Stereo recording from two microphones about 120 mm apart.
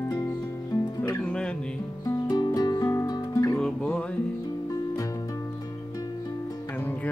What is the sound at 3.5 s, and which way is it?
Music, 5° left (ahead or behind).